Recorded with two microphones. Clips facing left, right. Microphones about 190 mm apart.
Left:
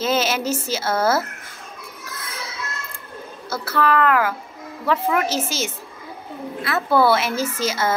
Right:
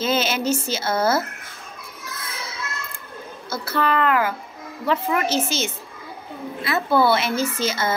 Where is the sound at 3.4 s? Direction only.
85° left.